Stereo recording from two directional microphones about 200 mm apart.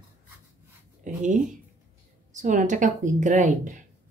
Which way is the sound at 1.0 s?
40° right (ahead or behind).